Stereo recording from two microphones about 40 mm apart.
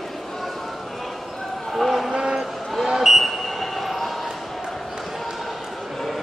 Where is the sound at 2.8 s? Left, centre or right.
Centre.